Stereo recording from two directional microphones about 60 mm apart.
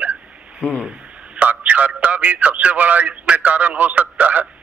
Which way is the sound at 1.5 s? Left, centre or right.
Right.